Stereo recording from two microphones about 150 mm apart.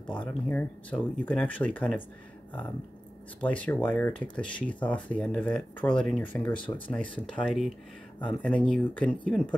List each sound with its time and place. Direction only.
0.0 s speech: 10° left (ahead or behind)
3.3 s speech: 10° left (ahead or behind)